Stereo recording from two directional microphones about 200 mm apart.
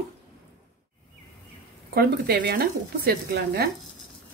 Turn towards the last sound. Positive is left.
turn(degrees=-50)  # may be behind; listen again after turning